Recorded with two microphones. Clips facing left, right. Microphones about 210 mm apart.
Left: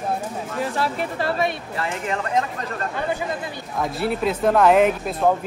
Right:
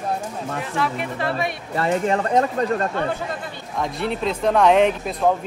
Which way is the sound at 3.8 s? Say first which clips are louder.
Left 1 dB; 5° left (ahead or behind).